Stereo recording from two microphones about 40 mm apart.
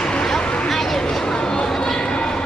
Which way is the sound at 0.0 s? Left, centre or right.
Left.